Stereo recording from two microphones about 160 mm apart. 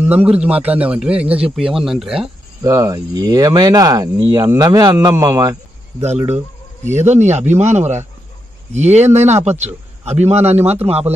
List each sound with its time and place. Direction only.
0.1 s a man's voice: 10° right (ahead or behind)
2.6 s speech: 20° right (ahead or behind)
6.9 s speech: 45° right (ahead or behind)